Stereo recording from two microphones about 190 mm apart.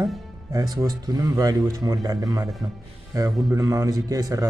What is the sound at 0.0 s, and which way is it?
Speech, 15° right (ahead or behind).